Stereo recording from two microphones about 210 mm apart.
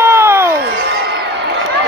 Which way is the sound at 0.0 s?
10° right (ahead or behind).